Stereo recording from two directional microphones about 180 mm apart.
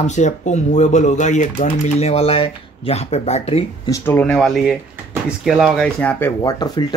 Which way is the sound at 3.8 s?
15° left (ahead or behind).